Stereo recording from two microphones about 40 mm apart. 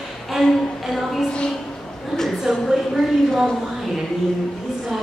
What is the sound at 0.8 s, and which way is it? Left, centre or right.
Music, centre.